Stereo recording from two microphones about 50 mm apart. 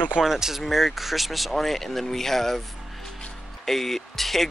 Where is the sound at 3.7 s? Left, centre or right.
Centre.